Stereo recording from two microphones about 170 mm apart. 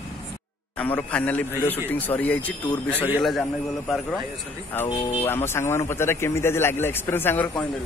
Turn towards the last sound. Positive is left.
turn(degrees=10)  # may be behind; listen again after turning